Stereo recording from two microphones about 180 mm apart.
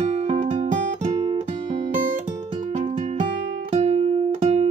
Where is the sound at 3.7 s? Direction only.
40° right (ahead or behind).